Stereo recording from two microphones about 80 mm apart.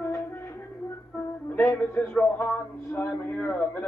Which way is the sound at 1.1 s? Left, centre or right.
Left.